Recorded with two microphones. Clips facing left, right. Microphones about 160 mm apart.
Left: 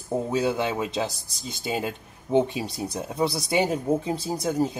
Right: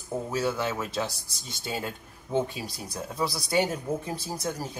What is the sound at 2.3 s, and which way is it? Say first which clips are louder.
Speech: left 6 dB; 20° left (ahead or behind).